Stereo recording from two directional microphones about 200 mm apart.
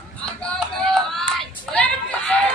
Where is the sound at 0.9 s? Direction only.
Centre (ahead or behind).